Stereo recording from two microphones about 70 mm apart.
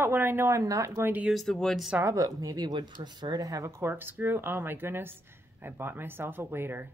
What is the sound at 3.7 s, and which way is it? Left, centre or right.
Speech, right.